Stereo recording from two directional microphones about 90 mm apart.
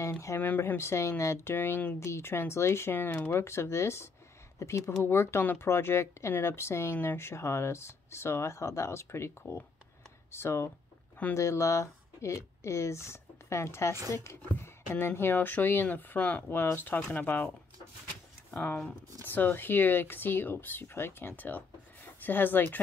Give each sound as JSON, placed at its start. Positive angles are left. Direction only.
{"t": 0.4, "sound": "speech", "side_deg": 20}
{"t": 18.5, "sound": "speech", "side_deg": 15}